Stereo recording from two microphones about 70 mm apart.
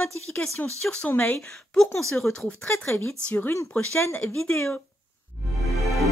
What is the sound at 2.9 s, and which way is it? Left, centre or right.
Speech, left.